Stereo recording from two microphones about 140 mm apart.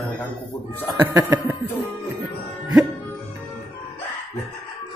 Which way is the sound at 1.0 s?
15° right (ahead or behind).